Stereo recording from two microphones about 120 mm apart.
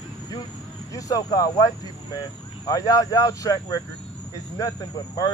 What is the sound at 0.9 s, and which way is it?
Speech, 30° left (ahead or behind).